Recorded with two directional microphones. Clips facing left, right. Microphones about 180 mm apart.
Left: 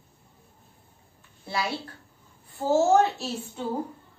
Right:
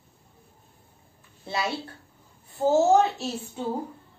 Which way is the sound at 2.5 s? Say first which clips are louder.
Right 2 dB; 20° right (ahead or behind).